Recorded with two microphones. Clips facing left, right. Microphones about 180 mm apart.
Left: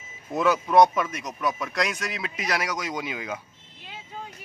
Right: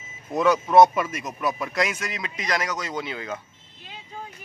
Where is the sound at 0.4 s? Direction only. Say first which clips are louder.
Right 2 dB; centre (ahead or behind).